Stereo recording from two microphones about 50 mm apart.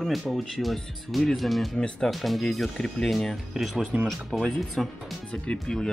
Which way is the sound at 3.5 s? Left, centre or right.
Centre.